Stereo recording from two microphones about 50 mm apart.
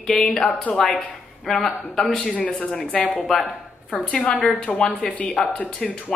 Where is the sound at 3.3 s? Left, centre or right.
Centre.